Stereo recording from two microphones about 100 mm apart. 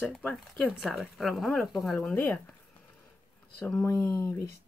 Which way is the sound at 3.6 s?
15° left (ahead or behind).